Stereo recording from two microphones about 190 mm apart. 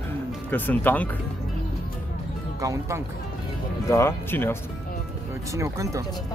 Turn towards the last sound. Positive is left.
turn(degrees=-15)  # may be behind; listen again after turning